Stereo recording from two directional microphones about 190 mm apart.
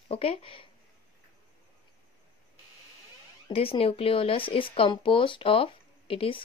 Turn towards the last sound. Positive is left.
turn(degrees=30)  # may be behind; listen again after turning